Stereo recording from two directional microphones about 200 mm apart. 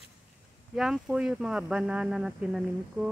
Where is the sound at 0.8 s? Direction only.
5° right (ahead or behind).